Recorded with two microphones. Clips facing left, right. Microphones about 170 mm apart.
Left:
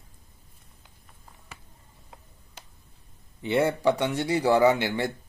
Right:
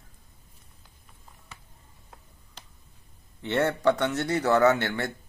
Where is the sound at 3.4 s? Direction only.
10° left (ahead or behind).